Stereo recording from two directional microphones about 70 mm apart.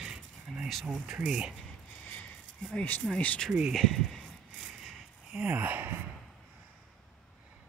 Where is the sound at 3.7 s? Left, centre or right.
Centre.